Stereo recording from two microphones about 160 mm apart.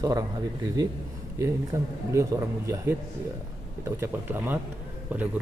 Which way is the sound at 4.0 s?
15° right (ahead or behind).